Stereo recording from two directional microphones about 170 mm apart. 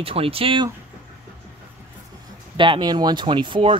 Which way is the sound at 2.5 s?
30° right (ahead or behind).